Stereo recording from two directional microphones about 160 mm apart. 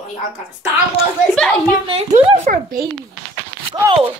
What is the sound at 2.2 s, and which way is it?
Speech, 45° right (ahead or behind).